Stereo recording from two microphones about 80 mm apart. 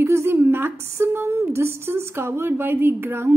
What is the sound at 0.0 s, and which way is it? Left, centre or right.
Speech, right.